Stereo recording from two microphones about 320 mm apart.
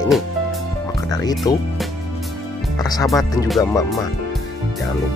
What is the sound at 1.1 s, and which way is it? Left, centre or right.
Speech, centre.